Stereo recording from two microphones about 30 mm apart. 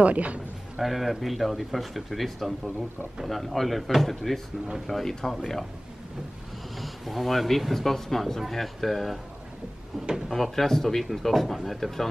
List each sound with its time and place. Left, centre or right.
0.0 s a man's voice: right
0.7 s speech: centre
6.8 s speech: centre
10.3 s speech: centre